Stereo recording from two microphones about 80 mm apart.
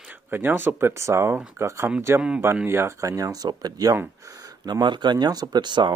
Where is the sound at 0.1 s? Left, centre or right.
Right.